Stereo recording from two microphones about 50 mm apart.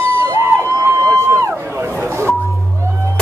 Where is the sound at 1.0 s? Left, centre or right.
Right.